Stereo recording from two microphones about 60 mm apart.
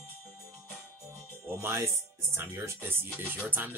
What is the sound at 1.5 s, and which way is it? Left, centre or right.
Speech, right.